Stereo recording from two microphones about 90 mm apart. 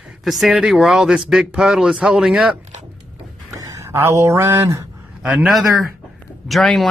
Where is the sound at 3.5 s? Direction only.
35° right (ahead or behind).